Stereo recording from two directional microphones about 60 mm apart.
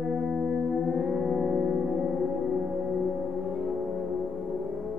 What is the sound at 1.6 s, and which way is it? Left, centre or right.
Music, centre.